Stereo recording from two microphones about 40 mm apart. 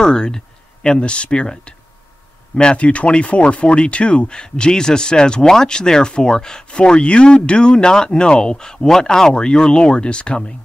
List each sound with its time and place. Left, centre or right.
0.0 s speech: centre
6.8 s speech: left